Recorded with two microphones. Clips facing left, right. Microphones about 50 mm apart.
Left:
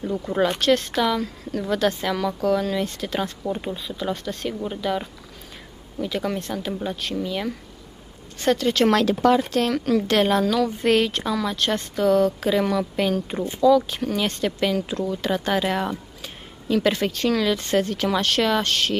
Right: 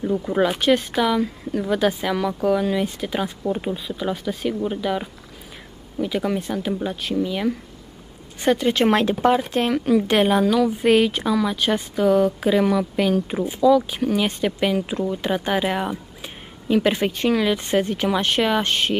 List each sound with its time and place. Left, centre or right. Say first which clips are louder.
0.0 s a woman's voice: right 2 dB; centre